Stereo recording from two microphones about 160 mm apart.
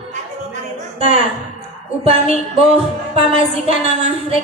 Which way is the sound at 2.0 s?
40° right (ahead or behind).